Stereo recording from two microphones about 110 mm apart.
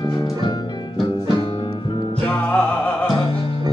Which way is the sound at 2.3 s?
10° left (ahead or behind).